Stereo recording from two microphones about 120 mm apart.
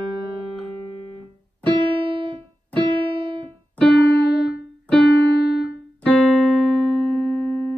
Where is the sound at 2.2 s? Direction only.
45° right (ahead or behind).